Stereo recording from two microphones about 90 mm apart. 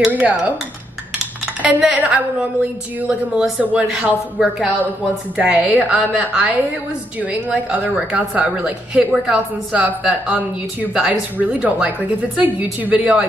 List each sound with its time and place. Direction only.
0.0 s a woman's voice: 15° right (ahead or behind)
1.6 s a woman's voice: 15° right (ahead or behind)